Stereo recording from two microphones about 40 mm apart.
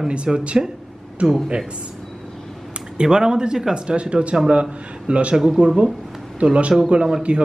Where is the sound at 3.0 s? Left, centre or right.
Centre.